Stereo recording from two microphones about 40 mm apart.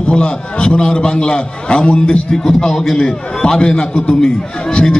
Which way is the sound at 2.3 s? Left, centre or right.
Centre.